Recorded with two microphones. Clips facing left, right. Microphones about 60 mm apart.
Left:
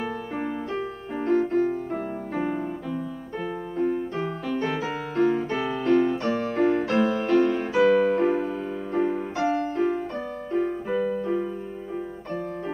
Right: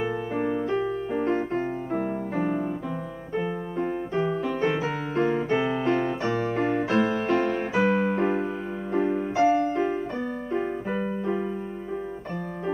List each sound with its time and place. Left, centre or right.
0.0 s music: centre
3.9 s music: centre
5.1 s music: centre
10.5 s keyboard: centre